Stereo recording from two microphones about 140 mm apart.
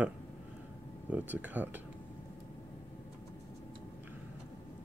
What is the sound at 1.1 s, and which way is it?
Speech, 10° right (ahead or behind).